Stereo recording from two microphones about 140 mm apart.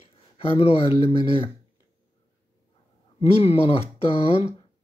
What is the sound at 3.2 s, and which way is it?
Speech, 45° left (ahead or behind).